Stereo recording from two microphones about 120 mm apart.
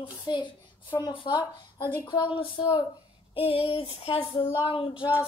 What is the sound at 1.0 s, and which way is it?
Speech, 35° left (ahead or behind).